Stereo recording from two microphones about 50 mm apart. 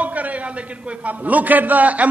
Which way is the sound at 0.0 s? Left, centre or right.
Right.